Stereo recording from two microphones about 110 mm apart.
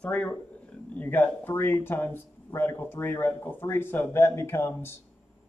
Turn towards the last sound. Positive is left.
turn(degrees=25)  # may be behind; listen again after turning